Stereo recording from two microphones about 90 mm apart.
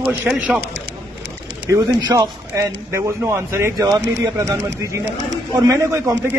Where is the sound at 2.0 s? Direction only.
50° right (ahead or behind).